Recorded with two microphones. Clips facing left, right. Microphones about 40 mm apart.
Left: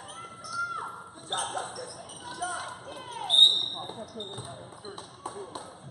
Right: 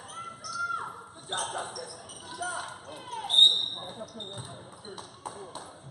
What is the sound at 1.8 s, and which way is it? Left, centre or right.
Speech, centre.